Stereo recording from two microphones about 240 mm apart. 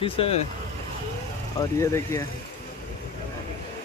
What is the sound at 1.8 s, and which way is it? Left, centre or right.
Speech, centre.